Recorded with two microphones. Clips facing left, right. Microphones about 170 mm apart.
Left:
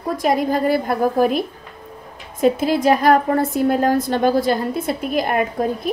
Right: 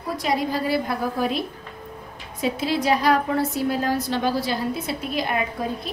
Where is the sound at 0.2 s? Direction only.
50° left (ahead or behind).